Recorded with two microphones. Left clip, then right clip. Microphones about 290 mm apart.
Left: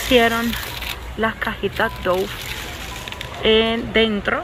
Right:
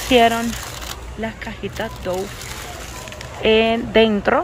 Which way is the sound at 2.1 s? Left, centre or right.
Centre.